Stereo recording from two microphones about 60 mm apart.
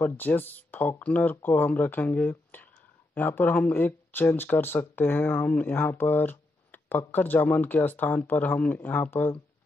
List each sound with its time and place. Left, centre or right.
0.0 s speech: left